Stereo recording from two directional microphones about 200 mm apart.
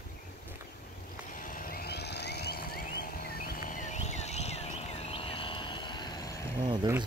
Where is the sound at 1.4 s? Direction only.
45° left (ahead or behind); by 6.2 s 20° left (ahead or behind).